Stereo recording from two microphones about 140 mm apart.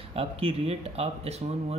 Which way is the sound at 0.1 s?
40° right (ahead or behind).